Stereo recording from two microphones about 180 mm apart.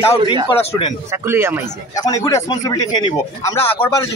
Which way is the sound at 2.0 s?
20° left (ahead or behind).